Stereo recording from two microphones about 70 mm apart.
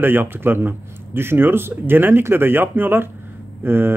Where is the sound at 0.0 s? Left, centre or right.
Right.